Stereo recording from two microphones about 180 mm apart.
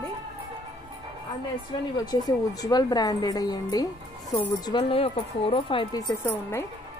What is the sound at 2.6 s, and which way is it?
Speech, 20° left (ahead or behind).